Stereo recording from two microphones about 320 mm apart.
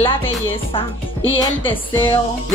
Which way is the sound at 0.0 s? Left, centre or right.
Centre.